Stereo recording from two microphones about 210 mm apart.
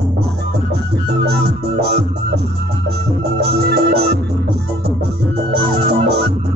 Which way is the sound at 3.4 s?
50° right (ahead or behind).